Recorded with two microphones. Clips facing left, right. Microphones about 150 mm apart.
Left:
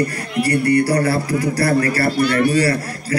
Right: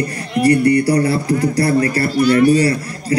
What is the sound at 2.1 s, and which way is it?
Speech, 40° right (ahead or behind).